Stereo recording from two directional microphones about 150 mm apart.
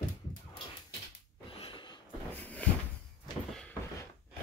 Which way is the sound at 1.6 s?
30° left (ahead or behind).